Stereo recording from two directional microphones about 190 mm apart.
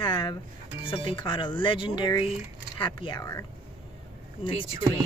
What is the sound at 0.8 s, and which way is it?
Speech, 30° left (ahead or behind).